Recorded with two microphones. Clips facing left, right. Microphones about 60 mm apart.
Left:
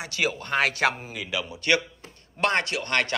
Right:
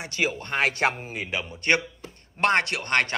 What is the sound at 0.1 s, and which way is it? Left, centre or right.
Speech, right.